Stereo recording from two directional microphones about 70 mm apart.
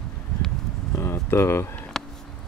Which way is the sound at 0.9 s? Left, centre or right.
Left.